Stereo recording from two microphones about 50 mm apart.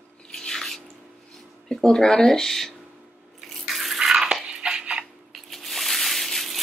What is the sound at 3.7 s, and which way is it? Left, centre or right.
Water, centre.